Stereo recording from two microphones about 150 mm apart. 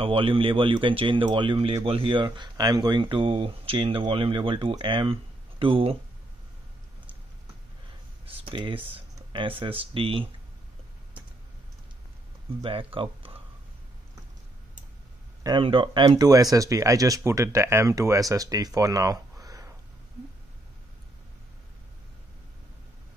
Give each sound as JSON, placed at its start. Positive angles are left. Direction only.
{"t": 0.0, "sound": "speech", "side_deg": -35}
{"t": 8.3, "sound": "speech", "side_deg": -35}
{"t": 12.6, "sound": "speech", "side_deg": -35}
{"t": 15.4, "sound": "speech", "side_deg": -35}